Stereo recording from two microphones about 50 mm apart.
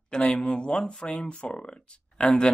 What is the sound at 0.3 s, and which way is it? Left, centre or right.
Speech, centre.